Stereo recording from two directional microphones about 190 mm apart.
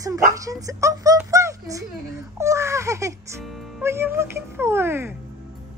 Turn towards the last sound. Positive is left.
turn(degrees=-10)  # may be behind; listen again after turning